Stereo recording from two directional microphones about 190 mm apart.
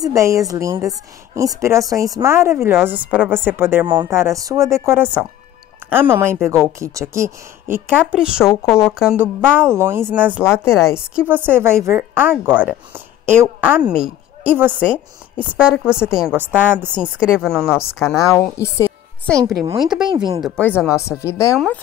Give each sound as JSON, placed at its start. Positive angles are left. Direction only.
{"t": 0.0, "sound": "a woman's voice", "side_deg": -15}
{"t": 10.4, "sound": "speech", "side_deg": 15}
{"t": 11.1, "sound": "a woman's voice", "side_deg": -10}
{"t": 17.6, "sound": "speech", "side_deg": 15}
{"t": 18.6, "sound": "music", "side_deg": 15}
{"t": 19.4, "sound": "a woman's voice", "side_deg": -15}
{"t": 19.8, "sound": "a woman's voice", "side_deg": -5}
{"t": 20.1, "sound": "speech", "side_deg": -25}
{"t": 20.4, "sound": "speech", "side_deg": 5}